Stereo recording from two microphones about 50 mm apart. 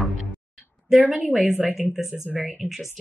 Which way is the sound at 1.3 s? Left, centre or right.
Centre.